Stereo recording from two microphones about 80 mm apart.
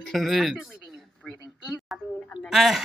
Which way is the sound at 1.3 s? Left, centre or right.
Centre.